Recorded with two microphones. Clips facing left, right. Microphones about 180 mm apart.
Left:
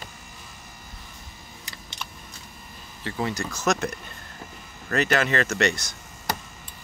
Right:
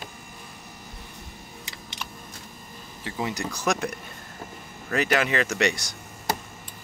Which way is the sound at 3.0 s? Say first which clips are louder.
Left 1 dB; 15° right (ahead or behind).